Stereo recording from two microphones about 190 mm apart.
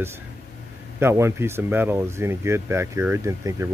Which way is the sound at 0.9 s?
15° right (ahead or behind).